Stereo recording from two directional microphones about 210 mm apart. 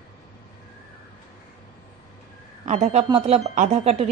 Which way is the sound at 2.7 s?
30° right (ahead or behind).